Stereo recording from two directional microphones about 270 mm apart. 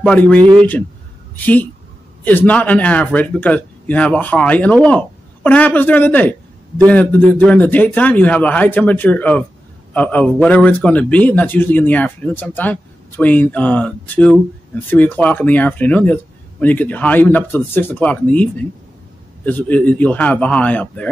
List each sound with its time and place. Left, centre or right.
0.0 s speech: centre
0.4 s speech: centre
1.3 s a woman's voice: centre